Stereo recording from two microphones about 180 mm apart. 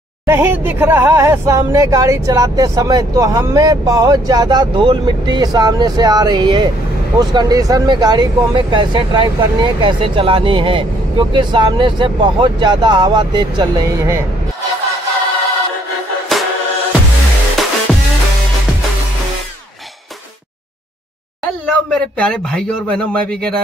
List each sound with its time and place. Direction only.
0.3 s speech: 10° right (ahead or behind)
17.6 s music: centre (ahead or behind)
21.6 s a man's voice: 5° left (ahead or behind)